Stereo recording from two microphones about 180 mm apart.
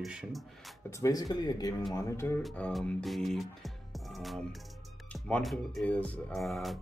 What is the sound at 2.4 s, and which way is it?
Music, 5° left (ahead or behind).